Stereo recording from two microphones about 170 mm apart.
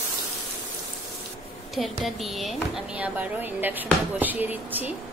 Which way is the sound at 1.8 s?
Centre (ahead or behind).